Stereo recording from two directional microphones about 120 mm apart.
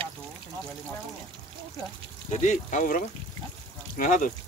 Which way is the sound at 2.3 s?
90° left.